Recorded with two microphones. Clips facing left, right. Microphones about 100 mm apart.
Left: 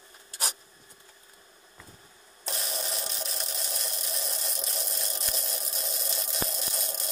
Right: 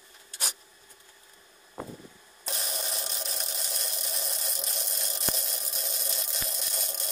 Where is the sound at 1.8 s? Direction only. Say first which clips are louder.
Right 14 dB; 45° right (ahead or behind).